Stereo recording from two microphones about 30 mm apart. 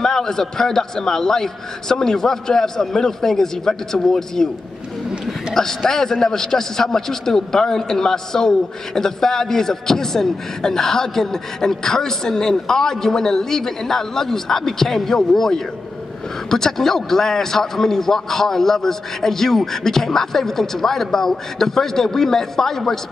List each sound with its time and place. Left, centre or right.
0.0 s a man's voice: centre
5.5 s a man's voice: centre